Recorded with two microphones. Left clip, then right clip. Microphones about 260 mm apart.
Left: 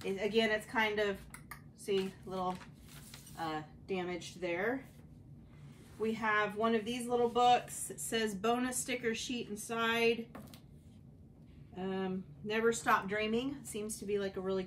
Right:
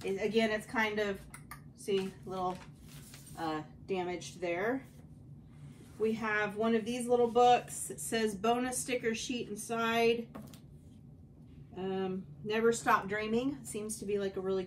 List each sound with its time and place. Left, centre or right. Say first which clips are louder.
0.0 s speech: right 1 dB; centre
5.9 s speech: even; centre
11.7 s speech: right 2 dB; centre